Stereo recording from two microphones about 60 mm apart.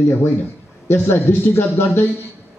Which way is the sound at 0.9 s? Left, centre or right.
Left.